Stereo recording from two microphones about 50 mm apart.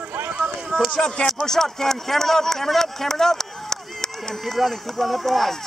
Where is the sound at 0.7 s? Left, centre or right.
Centre.